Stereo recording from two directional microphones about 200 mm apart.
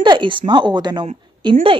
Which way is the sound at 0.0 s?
20° right (ahead or behind).